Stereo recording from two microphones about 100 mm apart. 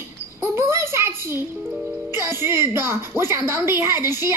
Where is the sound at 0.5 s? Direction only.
25° right (ahead or behind).